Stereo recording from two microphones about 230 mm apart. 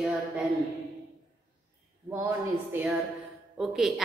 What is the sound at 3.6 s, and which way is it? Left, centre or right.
Speech, centre.